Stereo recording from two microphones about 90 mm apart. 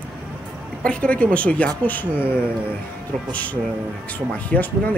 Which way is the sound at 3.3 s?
15° left (ahead or behind).